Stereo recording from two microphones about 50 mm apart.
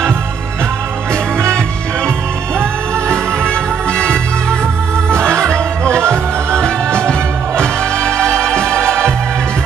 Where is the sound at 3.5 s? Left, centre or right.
Centre.